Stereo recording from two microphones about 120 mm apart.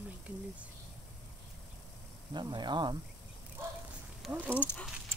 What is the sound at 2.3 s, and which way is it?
Speech, 40° right (ahead or behind).